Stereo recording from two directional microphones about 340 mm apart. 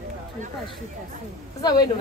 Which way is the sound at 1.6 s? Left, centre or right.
Centre.